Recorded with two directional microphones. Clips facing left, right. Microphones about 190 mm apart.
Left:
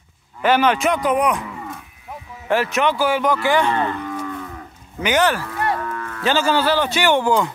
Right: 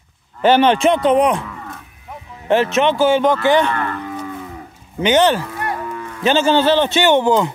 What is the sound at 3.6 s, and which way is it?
Speech, 20° left (ahead or behind).